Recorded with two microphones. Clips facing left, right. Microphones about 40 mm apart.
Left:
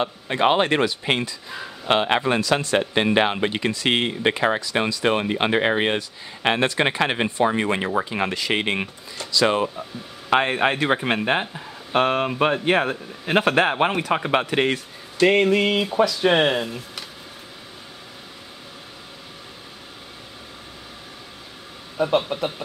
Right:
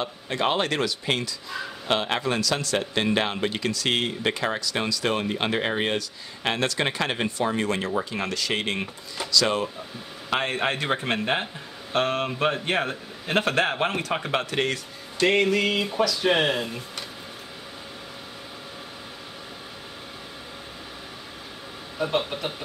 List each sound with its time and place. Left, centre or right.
0.0 s speech: left
21.9 s speech: centre